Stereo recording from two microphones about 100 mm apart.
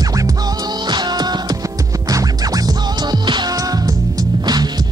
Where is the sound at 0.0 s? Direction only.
35° right (ahead or behind).